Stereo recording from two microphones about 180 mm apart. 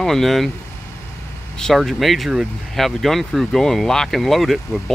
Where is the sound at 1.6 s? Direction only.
Centre (ahead or behind).